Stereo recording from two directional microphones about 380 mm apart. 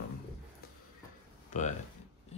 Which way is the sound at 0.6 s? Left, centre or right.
Left.